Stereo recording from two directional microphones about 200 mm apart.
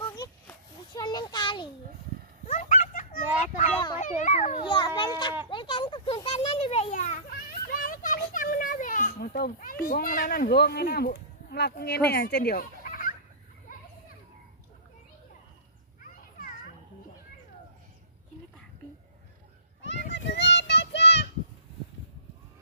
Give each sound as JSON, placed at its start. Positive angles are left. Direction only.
{"t": 0.1, "sound": "a sound", "side_deg": 20}
{"t": 2.4, "sound": "a sound", "side_deg": 35}
{"t": 4.0, "sound": "children playing", "side_deg": 40}
{"t": 4.6, "sound": "children playing", "side_deg": 25}
{"t": 16.0, "sound": "children playing", "side_deg": 45}
{"t": 19.8, "sound": "children playing", "side_deg": 65}